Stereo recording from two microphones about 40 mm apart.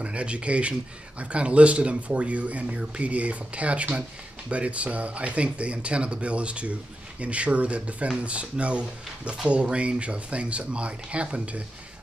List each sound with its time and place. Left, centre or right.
0.0 s speech: right